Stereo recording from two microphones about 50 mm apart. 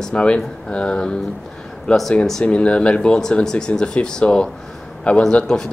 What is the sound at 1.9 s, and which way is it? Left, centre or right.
Speech, centre.